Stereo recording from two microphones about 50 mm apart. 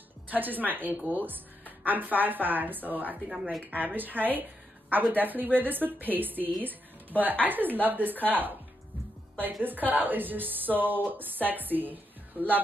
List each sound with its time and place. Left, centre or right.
0.3 s a woman's voice: right
9.6 s a woman's voice: right